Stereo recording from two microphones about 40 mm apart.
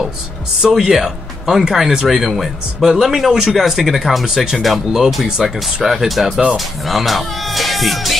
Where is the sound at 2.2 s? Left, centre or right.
Centre.